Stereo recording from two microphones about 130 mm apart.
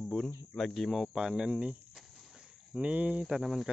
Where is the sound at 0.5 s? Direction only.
Centre (ahead or behind).